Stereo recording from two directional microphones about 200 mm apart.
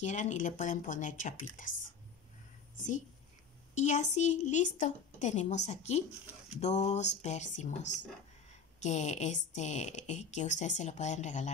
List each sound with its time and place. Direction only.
0.0 s a woman's voice: 35° left (ahead or behind)
3.7 s a woman's voice: 35° left (ahead or behind)